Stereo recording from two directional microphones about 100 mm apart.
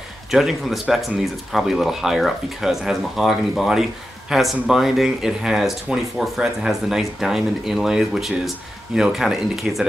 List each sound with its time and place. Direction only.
0.3 s speech: centre (ahead or behind)